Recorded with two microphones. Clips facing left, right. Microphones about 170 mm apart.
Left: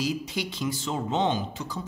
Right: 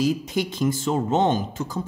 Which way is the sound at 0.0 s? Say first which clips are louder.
Right 6 dB; 50° right (ahead or behind).